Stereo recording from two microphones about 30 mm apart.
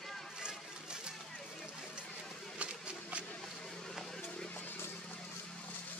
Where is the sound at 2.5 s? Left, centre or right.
Right.